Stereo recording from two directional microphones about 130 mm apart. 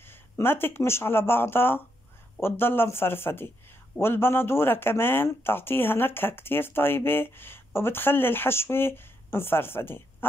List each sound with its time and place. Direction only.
0.0 s speech: 15° left (ahead or behind)